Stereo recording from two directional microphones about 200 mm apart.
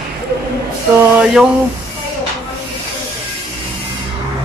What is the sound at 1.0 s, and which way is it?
Speech, 5° right (ahead or behind).